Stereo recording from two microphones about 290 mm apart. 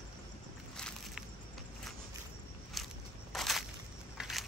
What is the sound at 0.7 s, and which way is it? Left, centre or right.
Crushing, centre.